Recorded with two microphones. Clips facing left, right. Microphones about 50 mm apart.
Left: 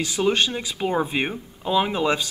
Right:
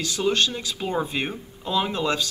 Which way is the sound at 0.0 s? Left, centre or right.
Centre.